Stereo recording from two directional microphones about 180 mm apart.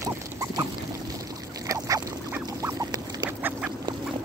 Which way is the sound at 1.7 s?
20° right (ahead or behind).